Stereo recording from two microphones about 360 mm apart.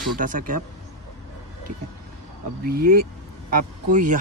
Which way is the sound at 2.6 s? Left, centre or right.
Right.